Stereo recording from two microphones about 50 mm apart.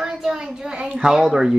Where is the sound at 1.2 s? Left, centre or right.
Centre.